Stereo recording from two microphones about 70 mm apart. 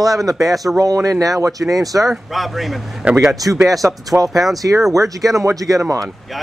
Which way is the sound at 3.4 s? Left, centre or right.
Right.